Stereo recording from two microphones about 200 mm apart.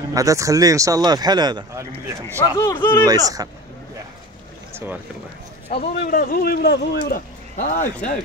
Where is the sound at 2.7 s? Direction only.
25° left (ahead or behind).